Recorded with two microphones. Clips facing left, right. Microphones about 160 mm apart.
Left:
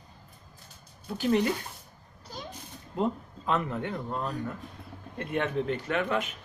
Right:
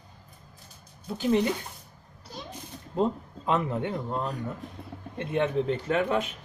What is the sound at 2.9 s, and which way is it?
Speech, 25° right (ahead or behind).